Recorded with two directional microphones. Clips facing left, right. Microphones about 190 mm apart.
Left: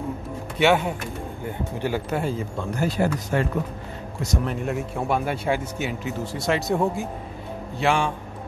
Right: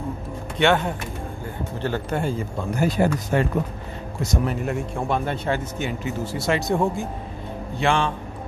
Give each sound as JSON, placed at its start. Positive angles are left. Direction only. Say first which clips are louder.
{"t": 0.6, "sound": "speech", "louder": "even", "side_deg": 5}
{"t": 2.7, "sound": "speech", "louder": "right 3 dB", "side_deg": -15}
{"t": 4.5, "sound": "a man's voice", "louder": "right 1 dB", "side_deg": 0}